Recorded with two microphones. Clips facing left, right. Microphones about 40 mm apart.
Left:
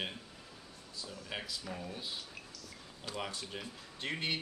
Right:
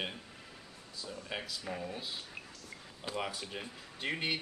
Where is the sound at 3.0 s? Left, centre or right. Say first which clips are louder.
Right 3 dB; centre.